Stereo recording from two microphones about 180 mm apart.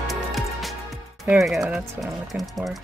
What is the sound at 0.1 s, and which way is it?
Music, centre (ahead or behind).